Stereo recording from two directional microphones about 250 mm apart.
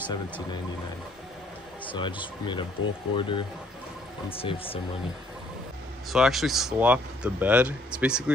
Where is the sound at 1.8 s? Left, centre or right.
Centre.